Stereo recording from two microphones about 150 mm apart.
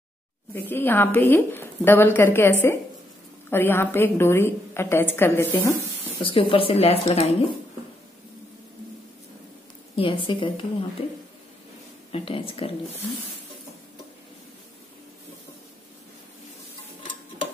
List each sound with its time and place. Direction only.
0.5 s a woman's voice: 15° left (ahead or behind)
6.1 s speech: 35° left (ahead or behind)
9.9 s speech: 35° left (ahead or behind)